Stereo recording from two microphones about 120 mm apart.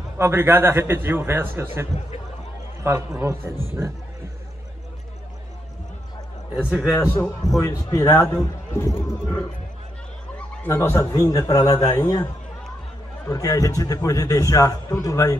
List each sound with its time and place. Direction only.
0.2 s a man's voice: 20° right (ahead or behind)
6.5 s a man's voice: 10° right (ahead or behind)
7.2 s a man's voice: 30° left (ahead or behind)
10.6 s speech: 20° left (ahead or behind)
13.3 s a man's voice: 30° left (ahead or behind)